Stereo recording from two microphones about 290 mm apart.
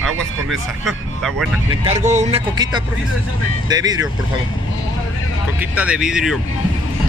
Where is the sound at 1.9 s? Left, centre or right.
Right.